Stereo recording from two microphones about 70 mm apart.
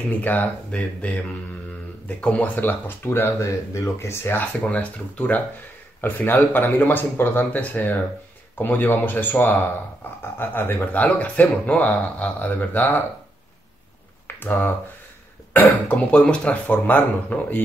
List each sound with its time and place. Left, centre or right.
0.2 s speech: left
3.4 s speech: left
4.6 s speech: centre
14.2 s a sound: left
15.5 s speech: left